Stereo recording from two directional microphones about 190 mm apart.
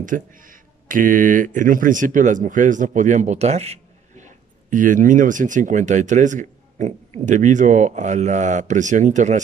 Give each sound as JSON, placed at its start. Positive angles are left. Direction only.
{"t": 0.0, "sound": "speech", "side_deg": -45}